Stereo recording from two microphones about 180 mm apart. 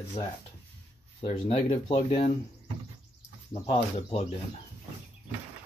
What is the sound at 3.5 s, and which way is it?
Speech, 35° left (ahead or behind).